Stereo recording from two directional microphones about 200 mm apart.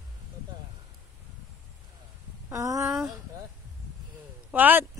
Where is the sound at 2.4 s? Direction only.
15° right (ahead or behind).